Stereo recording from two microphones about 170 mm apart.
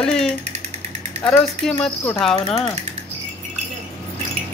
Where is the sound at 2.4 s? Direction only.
35° left (ahead or behind).